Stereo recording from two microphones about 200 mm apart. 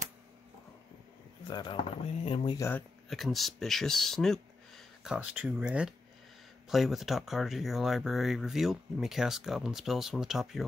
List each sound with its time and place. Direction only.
1.5 s speech: 20° left (ahead or behind)
2.5 s speech: 15° left (ahead or behind)
3.1 s speech: centre (ahead or behind)